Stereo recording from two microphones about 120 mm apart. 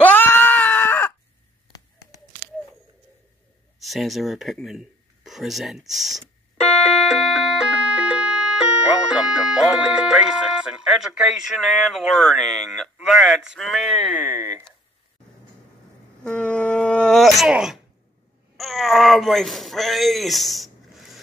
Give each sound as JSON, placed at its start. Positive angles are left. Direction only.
{"t": 0.0, "sound": "screaming", "side_deg": 15}
{"t": 3.8, "sound": "speech", "side_deg": 0}
{"t": 7.1, "sound": "music", "side_deg": 0}
{"t": 9.1, "sound": "speech", "side_deg": -5}
{"t": 14.0, "sound": "speech", "side_deg": -15}
{"t": 16.3, "sound": "a sound", "side_deg": 10}
{"t": 18.6, "sound": "speech", "side_deg": 0}